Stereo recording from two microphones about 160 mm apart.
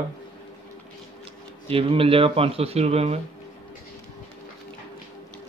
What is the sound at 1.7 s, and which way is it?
Speech, 35° right (ahead or behind).